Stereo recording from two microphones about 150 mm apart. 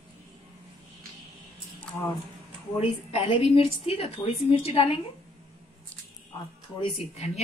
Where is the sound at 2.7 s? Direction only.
40° left (ahead or behind).